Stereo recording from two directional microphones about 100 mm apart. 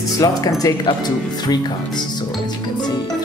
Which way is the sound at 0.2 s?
35° left (ahead or behind).